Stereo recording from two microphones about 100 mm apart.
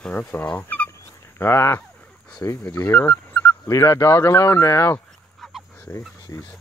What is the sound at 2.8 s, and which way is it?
Speech, 15° left (ahead or behind).